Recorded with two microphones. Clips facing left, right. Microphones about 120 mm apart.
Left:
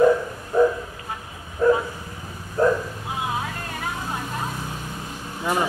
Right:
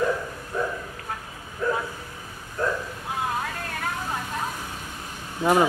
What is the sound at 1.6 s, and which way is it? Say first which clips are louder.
Dog: left 8 dB; 30° left (ahead or behind).